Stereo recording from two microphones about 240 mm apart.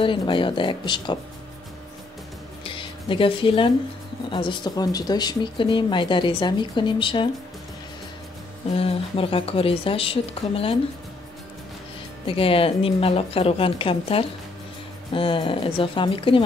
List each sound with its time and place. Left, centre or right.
0.0 s speech: left
2.6 s music: left
4.3 s speech: centre
8.6 s speech: left
12.3 s speech: left